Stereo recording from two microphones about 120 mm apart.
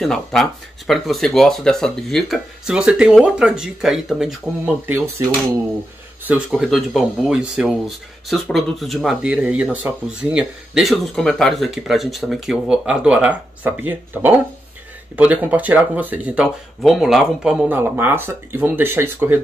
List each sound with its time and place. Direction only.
0.0 s speech: 5° left (ahead or behind)
6.2 s speech: 10° right (ahead or behind)
16.8 s speech: centre (ahead or behind); by 19.4 s 20° right (ahead or behind)